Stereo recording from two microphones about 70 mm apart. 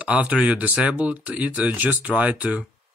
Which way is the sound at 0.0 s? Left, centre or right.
Centre.